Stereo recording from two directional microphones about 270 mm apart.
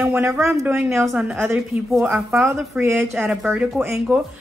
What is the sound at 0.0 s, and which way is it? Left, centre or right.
A woman's voice, centre.